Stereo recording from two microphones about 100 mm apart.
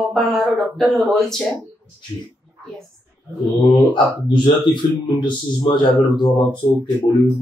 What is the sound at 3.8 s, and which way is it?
Speech, 50° left (ahead or behind).